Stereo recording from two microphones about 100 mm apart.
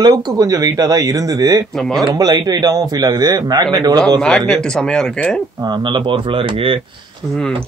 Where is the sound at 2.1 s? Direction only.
40° right (ahead or behind).